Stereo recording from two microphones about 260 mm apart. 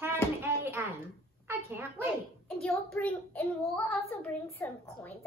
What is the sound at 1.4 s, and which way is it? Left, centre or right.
Speech, centre.